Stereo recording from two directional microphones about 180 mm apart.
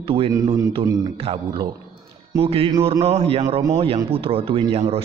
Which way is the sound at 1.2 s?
30° right (ahead or behind).